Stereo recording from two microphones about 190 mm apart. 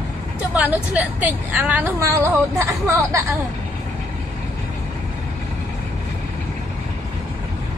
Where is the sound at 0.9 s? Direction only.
10° right (ahead or behind).